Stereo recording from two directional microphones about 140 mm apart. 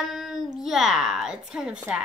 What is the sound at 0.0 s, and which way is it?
A child's voice, centre (ahead or behind).